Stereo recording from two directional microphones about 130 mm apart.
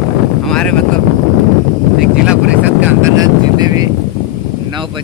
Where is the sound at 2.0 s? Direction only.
10° right (ahead or behind).